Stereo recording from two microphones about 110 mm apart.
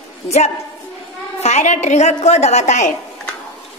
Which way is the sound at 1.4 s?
90° left.